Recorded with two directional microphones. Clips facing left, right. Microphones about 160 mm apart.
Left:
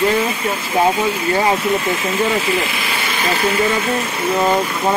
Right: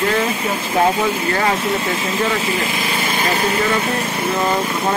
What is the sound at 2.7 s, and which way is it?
Light engine, 45° right (ahead or behind).